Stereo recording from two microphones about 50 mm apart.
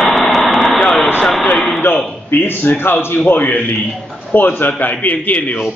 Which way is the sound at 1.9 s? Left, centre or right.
Left.